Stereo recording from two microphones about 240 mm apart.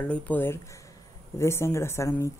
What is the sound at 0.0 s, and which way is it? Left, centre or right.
Speech, centre.